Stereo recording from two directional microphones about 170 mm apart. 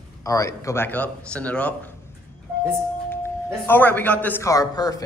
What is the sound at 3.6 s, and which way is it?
A man's voice, 10° left (ahead or behind).